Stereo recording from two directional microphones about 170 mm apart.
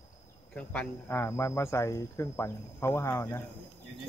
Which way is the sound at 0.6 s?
10° left (ahead or behind).